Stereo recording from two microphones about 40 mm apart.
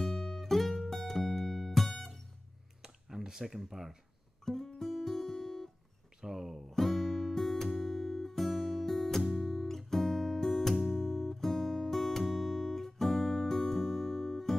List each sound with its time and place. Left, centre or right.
0.0 s music: centre
2.8 s a sound: centre
4.5 s music: centre
6.2 s music: centre
6.7 s music: centre